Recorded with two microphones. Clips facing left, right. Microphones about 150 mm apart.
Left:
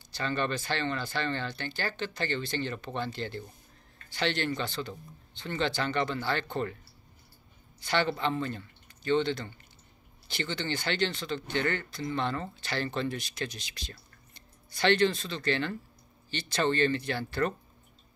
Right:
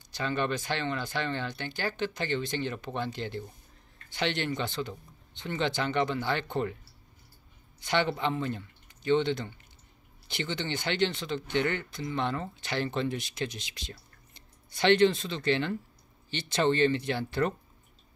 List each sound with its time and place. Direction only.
0.1 s speech: 15° right (ahead or behind)
7.8 s speech: 15° right (ahead or behind)